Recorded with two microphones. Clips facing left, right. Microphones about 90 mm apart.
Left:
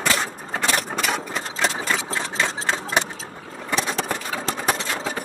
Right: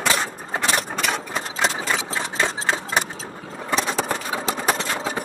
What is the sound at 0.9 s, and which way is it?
Sewing machine, centre (ahead or behind).